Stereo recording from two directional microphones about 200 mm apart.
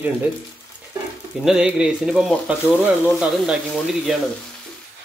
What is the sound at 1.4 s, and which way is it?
Speech, 5° right (ahead or behind).